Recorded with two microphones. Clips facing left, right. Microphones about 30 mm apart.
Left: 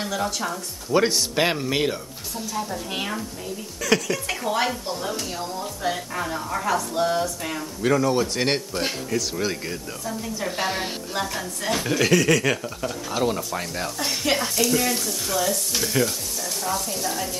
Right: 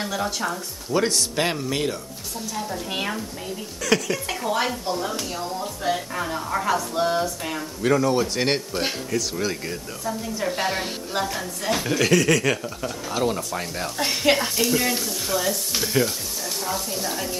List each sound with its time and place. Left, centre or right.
0.0 s speech: centre
0.9 s speech: centre
2.5 s speech: centre
13.9 s speech: right
14.3 s speech: centre